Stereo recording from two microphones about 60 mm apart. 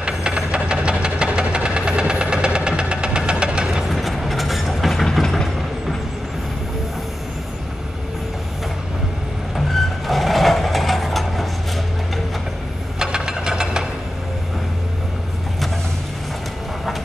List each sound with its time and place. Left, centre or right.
0.0 s train: centre
3.8 s train: centre
9.7 s vehicle: centre
13.0 s a sound: centre